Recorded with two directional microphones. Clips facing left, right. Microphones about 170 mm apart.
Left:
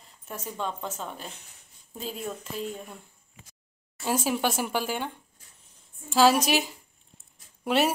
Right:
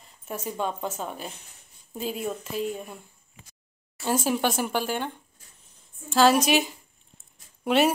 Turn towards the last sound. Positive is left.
turn(degrees=0)  # may be behind; listen again after turning